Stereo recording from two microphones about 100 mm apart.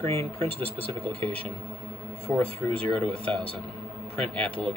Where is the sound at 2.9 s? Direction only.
10° left (ahead or behind).